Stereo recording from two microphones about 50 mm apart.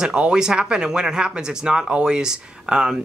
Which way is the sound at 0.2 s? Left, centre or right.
Centre.